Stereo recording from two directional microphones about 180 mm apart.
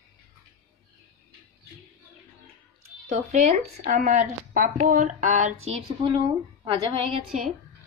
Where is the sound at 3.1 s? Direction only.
40° right (ahead or behind).